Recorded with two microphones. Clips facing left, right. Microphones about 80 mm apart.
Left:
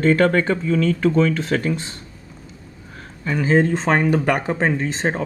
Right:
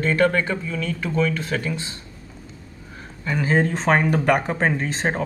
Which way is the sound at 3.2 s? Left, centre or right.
Centre.